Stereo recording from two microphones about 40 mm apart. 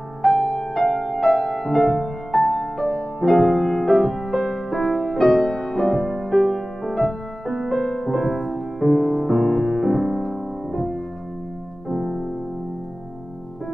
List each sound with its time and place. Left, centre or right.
0.2 s music: centre
11.9 s music: centre